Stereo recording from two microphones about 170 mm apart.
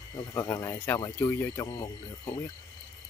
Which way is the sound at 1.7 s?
30° left (ahead or behind).